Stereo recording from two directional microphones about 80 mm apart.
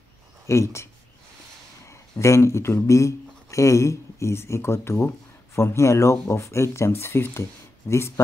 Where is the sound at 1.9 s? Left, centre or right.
Left.